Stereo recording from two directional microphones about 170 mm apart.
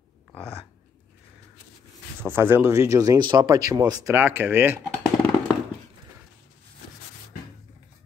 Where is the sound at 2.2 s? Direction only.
15° right (ahead or behind).